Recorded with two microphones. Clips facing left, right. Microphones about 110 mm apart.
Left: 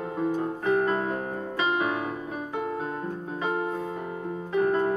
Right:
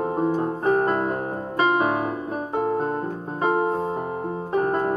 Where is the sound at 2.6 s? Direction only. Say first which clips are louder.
Right 9 dB; 35° right (ahead or behind).